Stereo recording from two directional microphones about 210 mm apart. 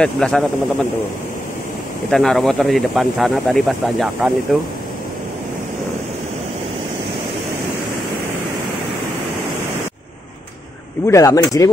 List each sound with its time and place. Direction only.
0.0 s speech: 5° left (ahead or behind)
2.0 s speech: centre (ahead or behind)
11.1 s speech: 15° left (ahead or behind)